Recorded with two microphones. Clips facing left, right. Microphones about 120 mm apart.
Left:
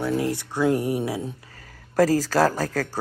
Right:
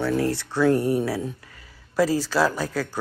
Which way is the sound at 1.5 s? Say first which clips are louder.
Left 3 dB; 45° left (ahead or behind).